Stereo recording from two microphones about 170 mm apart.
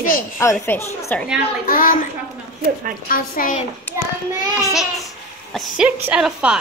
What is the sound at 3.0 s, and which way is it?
Speech, 55° left (ahead or behind).